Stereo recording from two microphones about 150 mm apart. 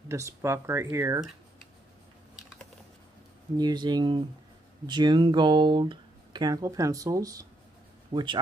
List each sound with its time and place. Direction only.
0.1 s speech: 20° right (ahead or behind)
3.5 s a man's voice: 25° right (ahead or behind)